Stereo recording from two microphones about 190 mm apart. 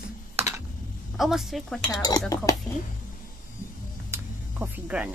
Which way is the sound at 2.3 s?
20° left (ahead or behind).